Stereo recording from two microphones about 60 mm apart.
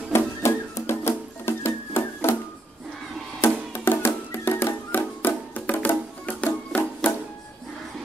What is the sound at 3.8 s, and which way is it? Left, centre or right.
Music, left.